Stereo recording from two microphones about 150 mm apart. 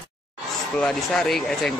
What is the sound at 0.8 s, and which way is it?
Speech, 5° left (ahead or behind).